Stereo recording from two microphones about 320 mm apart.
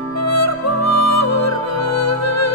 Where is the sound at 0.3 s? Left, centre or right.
Left.